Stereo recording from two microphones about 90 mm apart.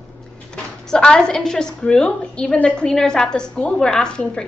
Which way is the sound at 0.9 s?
5° left (ahead or behind).